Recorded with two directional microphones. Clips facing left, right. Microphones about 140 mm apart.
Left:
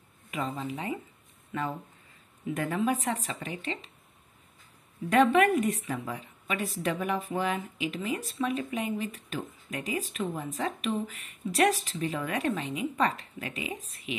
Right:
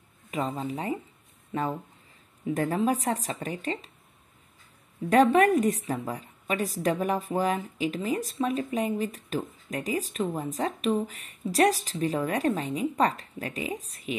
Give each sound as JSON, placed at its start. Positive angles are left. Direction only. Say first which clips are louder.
{"t": 0.3, "sound": "a woman's voice", "louder": "right 3 dB", "side_deg": -35}
{"t": 5.1, "sound": "a woman's voice", "louder": "right 2 dB", "side_deg": -40}